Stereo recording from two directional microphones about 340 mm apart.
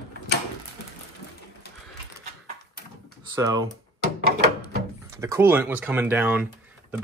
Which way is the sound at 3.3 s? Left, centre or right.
Centre.